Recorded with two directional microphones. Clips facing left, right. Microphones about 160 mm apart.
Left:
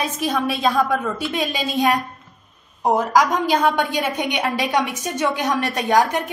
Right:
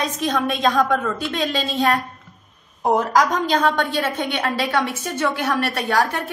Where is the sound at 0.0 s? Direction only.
5° left (ahead or behind).